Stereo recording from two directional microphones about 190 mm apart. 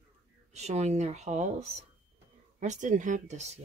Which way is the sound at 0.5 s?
35° right (ahead or behind).